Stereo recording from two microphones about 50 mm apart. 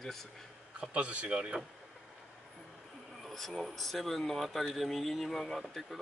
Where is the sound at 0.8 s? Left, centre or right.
Right.